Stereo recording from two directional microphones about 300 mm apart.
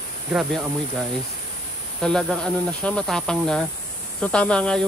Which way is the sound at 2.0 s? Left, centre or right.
Centre.